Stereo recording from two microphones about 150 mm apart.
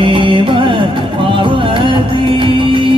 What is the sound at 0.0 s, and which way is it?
Music, 35° right (ahead or behind).